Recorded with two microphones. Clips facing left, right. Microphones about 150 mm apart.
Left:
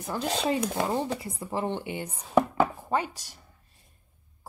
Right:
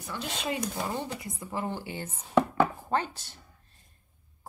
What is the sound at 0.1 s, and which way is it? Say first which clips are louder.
Speech: left 6 dB; 40° left (ahead or behind).